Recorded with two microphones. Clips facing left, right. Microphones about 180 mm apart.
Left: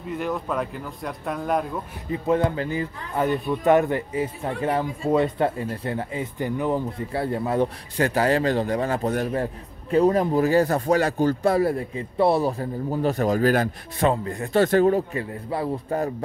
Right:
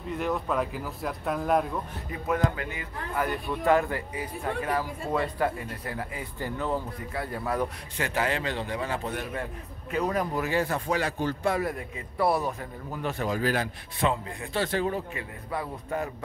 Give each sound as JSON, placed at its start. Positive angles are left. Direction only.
{"t": 0.0, "sound": "speech", "side_deg": 0}
{"t": 2.0, "sound": "speech", "side_deg": 25}
{"t": 3.3, "sound": "speech", "side_deg": 20}
{"t": 7.1, "sound": "speech", "side_deg": 30}
{"t": 8.0, "sound": "a man's voice", "side_deg": 40}